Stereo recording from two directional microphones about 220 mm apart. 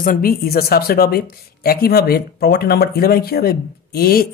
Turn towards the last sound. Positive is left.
turn(degrees=45)  # may be behind; listen again after turning